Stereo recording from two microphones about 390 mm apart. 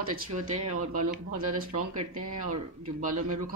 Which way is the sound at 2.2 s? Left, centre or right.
Right.